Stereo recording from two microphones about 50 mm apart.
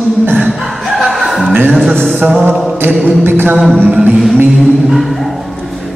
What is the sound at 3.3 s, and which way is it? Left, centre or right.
Speech, right.